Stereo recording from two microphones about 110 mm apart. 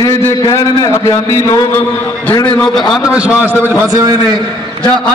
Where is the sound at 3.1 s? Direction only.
10° right (ahead or behind).